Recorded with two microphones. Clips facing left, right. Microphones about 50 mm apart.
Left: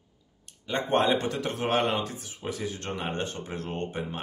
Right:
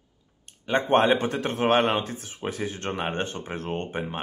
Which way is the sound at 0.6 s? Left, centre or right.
Right.